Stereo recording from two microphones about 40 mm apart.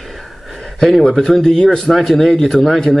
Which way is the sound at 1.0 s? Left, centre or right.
Centre.